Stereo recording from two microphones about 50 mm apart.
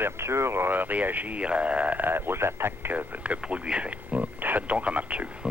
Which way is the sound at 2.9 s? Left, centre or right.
Right.